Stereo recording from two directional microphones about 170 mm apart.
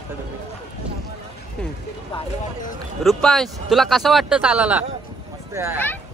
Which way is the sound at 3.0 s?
Centre (ahead or behind).